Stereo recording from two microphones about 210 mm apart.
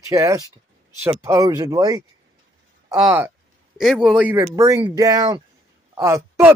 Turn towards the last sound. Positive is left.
turn(degrees=-15)  # may be behind; listen again after turning